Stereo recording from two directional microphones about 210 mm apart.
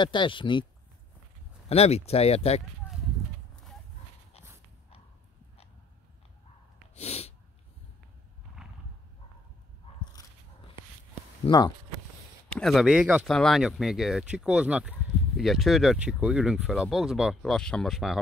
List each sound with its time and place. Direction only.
0.0 s speech: 20° left (ahead or behind)
1.7 s speech: 30° left (ahead or behind)
7.0 s sneeze: 30° left (ahead or behind)
11.4 s speech: 20° left (ahead or behind)
12.4 s speech: 5° left (ahead or behind)